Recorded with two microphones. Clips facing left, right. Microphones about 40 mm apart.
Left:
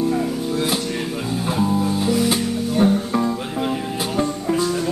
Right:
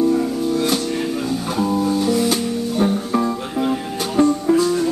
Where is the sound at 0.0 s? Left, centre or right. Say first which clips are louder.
Right 3 dB; centre.